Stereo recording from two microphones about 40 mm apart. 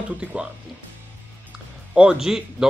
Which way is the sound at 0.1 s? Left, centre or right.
Right.